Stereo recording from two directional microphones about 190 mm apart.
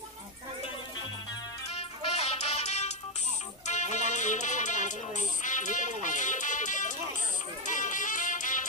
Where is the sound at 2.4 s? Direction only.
35° left (ahead or behind).